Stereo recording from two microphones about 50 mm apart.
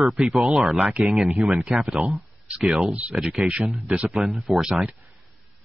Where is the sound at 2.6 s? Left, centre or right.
Centre.